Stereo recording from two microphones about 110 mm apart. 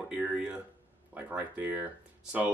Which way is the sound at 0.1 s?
10° right (ahead or behind).